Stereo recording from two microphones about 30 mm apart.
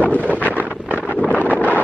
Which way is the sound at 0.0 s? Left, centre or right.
Left.